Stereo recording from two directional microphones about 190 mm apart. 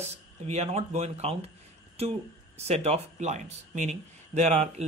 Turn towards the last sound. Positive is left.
turn(degrees=-35)  # may be behind; listen again after turning